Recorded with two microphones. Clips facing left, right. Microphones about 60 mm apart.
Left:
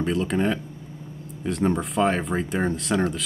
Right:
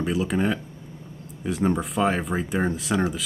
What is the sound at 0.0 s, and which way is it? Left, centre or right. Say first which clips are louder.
Speech: left 1 dB; centre.